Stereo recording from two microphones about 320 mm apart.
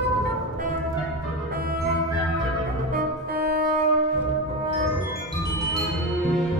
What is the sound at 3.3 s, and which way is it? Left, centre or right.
Music, right.